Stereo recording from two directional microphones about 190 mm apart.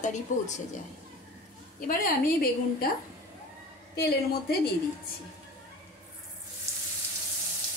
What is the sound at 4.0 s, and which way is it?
Speech, 55° left (ahead or behind).